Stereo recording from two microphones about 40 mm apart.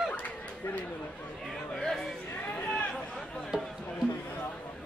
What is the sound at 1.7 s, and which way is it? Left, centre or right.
Chatter, centre.